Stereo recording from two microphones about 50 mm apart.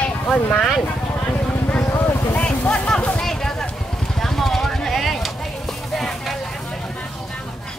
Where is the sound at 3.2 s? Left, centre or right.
Centre.